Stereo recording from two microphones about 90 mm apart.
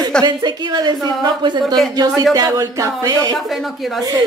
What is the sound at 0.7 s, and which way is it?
Speech, 50° right (ahead or behind).